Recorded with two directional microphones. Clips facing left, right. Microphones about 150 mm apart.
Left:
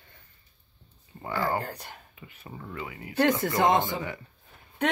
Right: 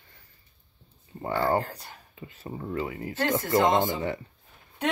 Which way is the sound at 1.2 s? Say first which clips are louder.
Right 4 dB; 35° right (ahead or behind).